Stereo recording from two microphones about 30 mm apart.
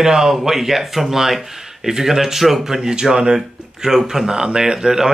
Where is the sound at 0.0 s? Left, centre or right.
Centre.